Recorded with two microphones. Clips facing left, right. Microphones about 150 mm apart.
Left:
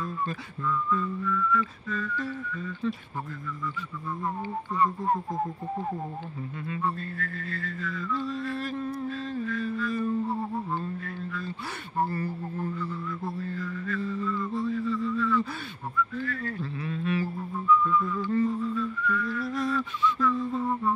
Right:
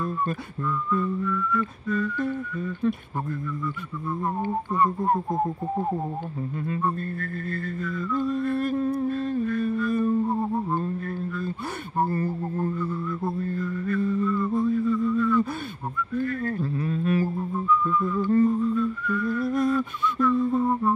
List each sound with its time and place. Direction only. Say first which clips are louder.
0.0 s whistling: right 5 dB; 45° right (ahead or behind)
4.2 s whistling: right 5 dB; 45° right (ahead or behind)
12.0 s whistling: right 4 dB; 45° right (ahead or behind)
13.2 s mantra: right 5 dB; 50° right (ahead or behind)
16.2 s music: right 6 dB; 50° right (ahead or behind)